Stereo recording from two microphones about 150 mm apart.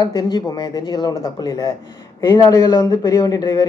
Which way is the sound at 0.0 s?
25° left (ahead or behind).